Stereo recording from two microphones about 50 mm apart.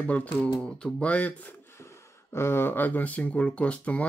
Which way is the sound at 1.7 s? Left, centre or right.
Left.